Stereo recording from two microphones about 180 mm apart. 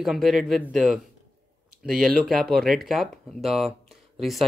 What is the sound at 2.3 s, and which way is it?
Speech, 55° right (ahead or behind).